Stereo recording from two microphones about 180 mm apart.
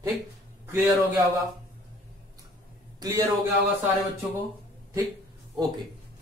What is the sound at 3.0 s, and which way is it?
Speech, 20° right (ahead or behind).